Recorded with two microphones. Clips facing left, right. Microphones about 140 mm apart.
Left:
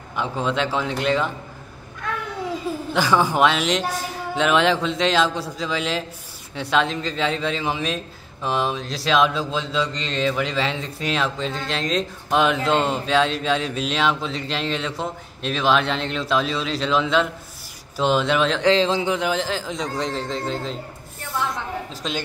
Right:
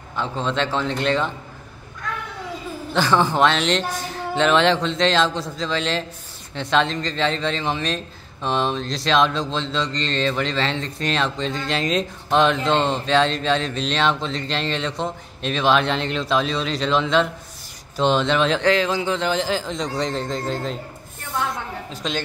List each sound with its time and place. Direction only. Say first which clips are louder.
0.1 s speech: left 1 dB; 10° left (ahead or behind)
2.9 s a man's voice: right 1 dB; 10° left (ahead or behind)
18.7 s speech: left 1 dB; 25° left (ahead or behind)
19.1 s a man's voice: right 1 dB; 5° left (ahead or behind)
21.2 s a sound: even; centre (ahead or behind)
22.0 s a man's voice: right 2 dB; centre (ahead or behind)